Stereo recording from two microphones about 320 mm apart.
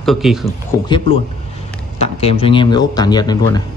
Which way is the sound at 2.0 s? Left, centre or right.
Centre.